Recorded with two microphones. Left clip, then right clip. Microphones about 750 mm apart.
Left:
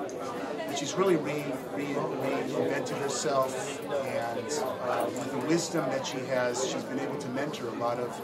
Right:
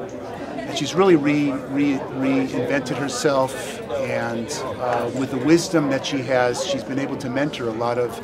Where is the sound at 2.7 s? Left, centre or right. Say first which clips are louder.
Right 7 dB; right.